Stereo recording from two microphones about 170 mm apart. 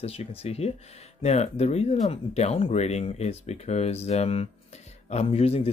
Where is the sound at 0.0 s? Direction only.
35° left (ahead or behind).